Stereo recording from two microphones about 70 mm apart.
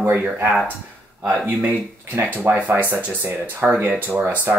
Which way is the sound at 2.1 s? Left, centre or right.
Right.